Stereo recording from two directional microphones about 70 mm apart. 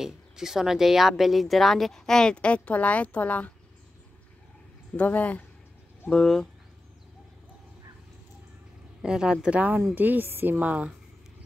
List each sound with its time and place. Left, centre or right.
0.0 s speech: centre; by 3.5 s left
4.9 s speech: left
6.0 s speech: centre
9.0 s a woman's voice: centre